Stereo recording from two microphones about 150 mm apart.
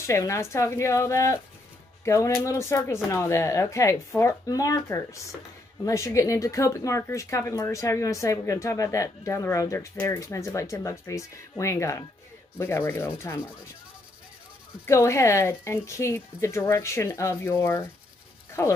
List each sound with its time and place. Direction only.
0.0 s speech: 20° left (ahead or behind)
12.5 s rub: 15° left (ahead or behind)
14.9 s speech: 20° left (ahead or behind)